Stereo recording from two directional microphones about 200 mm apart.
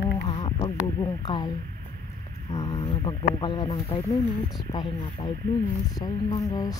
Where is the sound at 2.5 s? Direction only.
25° left (ahead or behind).